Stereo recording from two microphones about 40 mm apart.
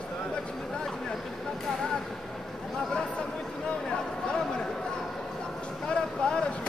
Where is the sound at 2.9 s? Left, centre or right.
Left.